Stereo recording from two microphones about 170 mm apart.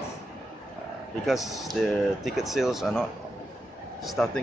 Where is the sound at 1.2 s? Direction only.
Centre (ahead or behind).